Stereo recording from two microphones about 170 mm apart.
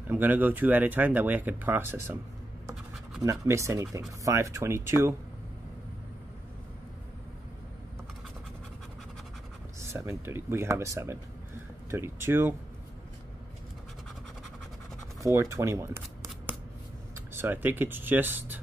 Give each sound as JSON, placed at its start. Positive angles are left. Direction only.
{"t": 0.1, "sound": "speech", "side_deg": -10}
{"t": 3.2, "sound": "speech", "side_deg": -20}
{"t": 9.8, "sound": "speech", "side_deg": -15}
{"t": 15.5, "sound": "speech", "side_deg": -15}
{"t": 16.5, "sound": "a sound", "side_deg": -10}
{"t": 17.3, "sound": "speech", "side_deg": -10}